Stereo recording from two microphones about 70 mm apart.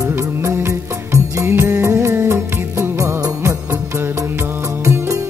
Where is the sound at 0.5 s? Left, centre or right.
Right.